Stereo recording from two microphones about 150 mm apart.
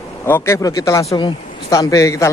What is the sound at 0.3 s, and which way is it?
Speech, 20° left (ahead or behind).